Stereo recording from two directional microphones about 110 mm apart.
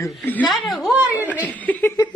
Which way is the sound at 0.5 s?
Centre (ahead or behind).